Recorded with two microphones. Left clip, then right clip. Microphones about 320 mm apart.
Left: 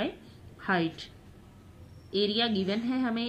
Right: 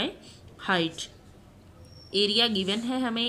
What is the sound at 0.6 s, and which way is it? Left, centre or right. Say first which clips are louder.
Speech: right 3 dB; centre.